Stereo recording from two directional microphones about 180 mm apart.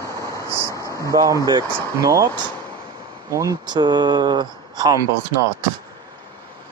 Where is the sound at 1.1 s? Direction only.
20° right (ahead or behind).